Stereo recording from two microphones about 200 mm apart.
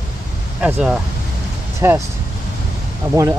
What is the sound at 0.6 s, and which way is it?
Speech, 5° right (ahead or behind).